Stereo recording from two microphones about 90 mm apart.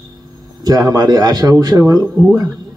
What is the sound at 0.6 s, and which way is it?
Speech, 45° right (ahead or behind).